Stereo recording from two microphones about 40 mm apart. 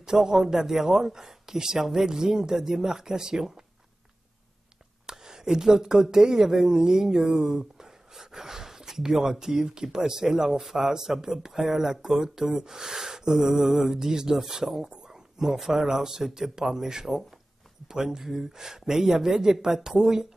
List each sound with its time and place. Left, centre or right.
0.0 s speech: centre
5.0 s a sound: centre
5.9 s speech: centre